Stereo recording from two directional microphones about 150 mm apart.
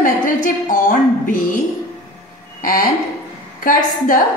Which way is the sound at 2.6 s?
70° left (ahead or behind).